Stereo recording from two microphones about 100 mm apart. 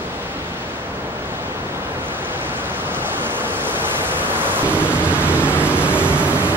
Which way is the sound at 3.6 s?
20° right (ahead or behind).